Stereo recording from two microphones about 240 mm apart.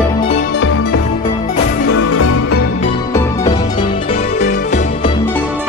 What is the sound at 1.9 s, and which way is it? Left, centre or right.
Music, left.